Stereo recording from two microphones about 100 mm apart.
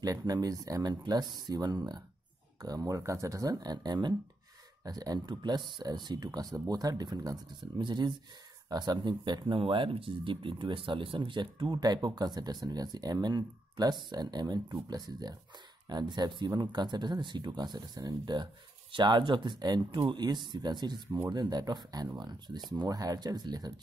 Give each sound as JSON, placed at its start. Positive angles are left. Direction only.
{"t": 0.0, "sound": "speech", "side_deg": -40}